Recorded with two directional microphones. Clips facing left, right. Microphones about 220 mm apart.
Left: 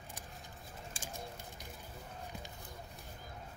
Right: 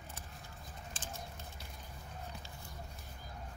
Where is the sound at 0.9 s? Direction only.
10° left (ahead or behind).